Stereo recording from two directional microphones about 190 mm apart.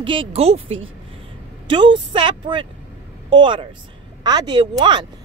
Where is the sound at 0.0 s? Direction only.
25° right (ahead or behind).